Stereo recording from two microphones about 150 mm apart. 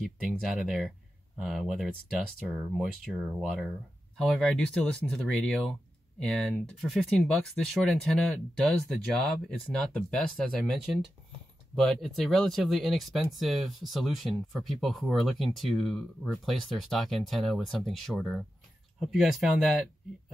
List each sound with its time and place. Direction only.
0.0 s speech: 5° right (ahead or behind)
4.2 s speech: 5° left (ahead or behind)
11.7 s speech: centre (ahead or behind)